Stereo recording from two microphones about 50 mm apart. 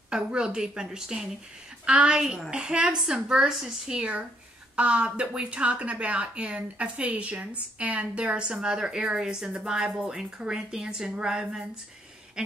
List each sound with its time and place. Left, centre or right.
0.1 s a woman's voice: centre